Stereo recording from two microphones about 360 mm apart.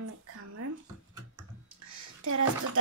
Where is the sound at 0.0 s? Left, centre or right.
Right.